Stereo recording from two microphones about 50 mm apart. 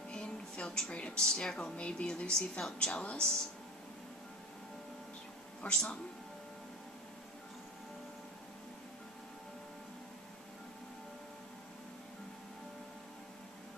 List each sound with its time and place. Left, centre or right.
0.1 s speech: centre
5.7 s speech: centre